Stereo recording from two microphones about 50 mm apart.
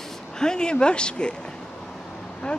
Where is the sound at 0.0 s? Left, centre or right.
Centre.